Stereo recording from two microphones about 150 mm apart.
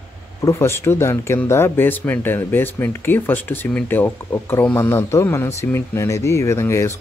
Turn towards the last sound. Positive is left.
turn(degrees=20)  # may be behind; listen again after turning